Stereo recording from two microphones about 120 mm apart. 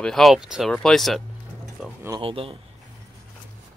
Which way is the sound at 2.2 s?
50° right (ahead or behind).